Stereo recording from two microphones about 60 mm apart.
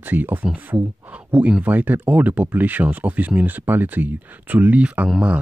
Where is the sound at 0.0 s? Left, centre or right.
Right.